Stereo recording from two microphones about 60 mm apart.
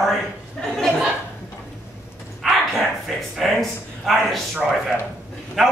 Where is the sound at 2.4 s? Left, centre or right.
Centre.